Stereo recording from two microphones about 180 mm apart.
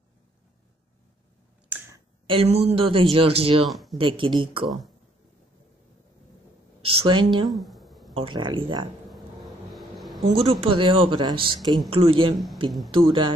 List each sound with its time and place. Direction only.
2.2 s speech: 35° right (ahead or behind)
3.6 s speech: centre (ahead or behind)
4.0 s speech: 30° right (ahead or behind)
6.8 s speech: 30° right (ahead or behind)
7.4 s a sound: centre (ahead or behind)
8.1 s speech: 30° right (ahead or behind)
9.1 s a sound: centre (ahead or behind)
10.2 s speech: 35° right (ahead or behind)